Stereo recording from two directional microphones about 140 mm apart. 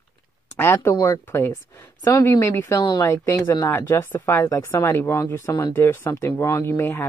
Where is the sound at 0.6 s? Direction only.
15° left (ahead or behind).